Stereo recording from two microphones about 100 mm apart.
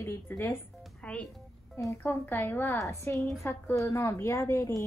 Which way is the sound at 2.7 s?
30° left (ahead or behind).